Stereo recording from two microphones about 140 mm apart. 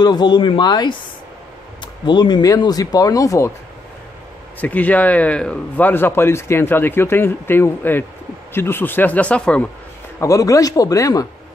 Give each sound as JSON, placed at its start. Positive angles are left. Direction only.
{"t": 0.0, "sound": "speech", "side_deg": 30}
{"t": 2.0, "sound": "speech", "side_deg": 30}
{"t": 4.6, "sound": "speech", "side_deg": 10}
{"t": 10.2, "sound": "speech", "side_deg": 25}